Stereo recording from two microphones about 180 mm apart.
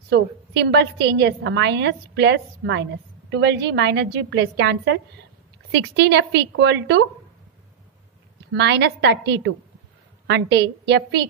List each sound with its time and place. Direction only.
0.1 s a woman's voice: 70° right (ahead or behind)
5.7 s a woman's voice: 70° right (ahead or behind)
8.5 s a woman's voice: 70° right (ahead or behind)